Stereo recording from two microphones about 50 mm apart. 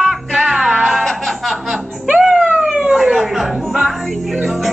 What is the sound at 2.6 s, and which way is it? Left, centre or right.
Music, centre.